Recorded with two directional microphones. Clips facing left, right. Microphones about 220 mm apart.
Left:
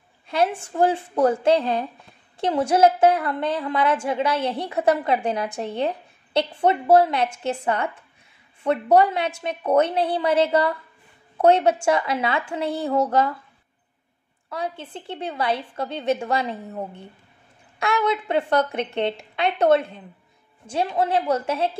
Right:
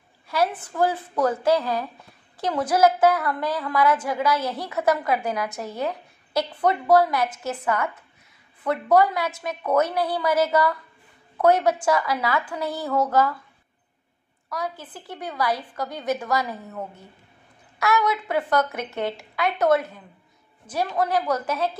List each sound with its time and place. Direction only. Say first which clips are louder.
0.6 s a woman's voice: left 3 dB; 25° left (ahead or behind)
14.5 s a woman's voice: left 2 dB; 25° left (ahead or behind)